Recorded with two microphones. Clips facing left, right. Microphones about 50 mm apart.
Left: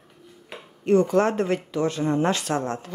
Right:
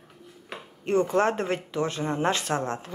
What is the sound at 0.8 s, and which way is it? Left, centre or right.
Speech, right.